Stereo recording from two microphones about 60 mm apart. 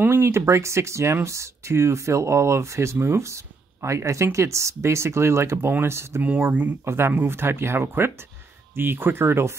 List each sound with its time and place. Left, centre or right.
0.0 s speech: right
6.2 s speech: right
6.8 s speech: right